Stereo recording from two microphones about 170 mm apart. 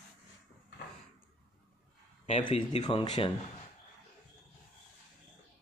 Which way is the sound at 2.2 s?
35° left (ahead or behind).